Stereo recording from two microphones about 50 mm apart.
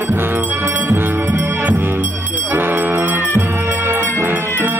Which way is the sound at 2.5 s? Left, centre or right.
Right.